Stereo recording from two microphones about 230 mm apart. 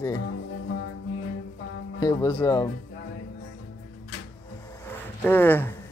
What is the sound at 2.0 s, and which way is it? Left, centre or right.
Speech, centre.